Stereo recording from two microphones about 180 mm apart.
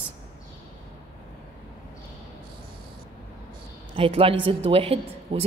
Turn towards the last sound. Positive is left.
turn(degrees=-30)  # may be behind; listen again after turning